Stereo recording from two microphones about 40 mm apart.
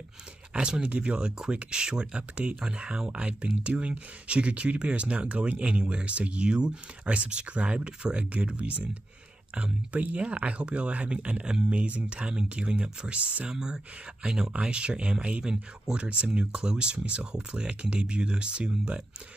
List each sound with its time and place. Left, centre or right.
0.5 s speech: right
13.5 s speech: centre